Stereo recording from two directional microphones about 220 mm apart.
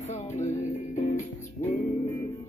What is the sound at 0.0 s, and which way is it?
Music, 30° left (ahead or behind).